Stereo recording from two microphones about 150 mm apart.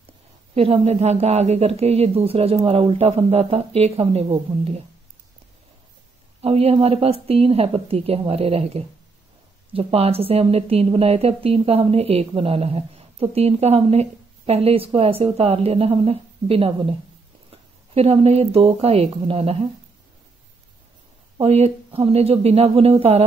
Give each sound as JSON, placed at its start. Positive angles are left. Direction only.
{"t": 0.6, "sound": "speech", "side_deg": -45}
{"t": 6.4, "sound": "a woman's voice", "side_deg": -40}
{"t": 21.4, "sound": "speech", "side_deg": -45}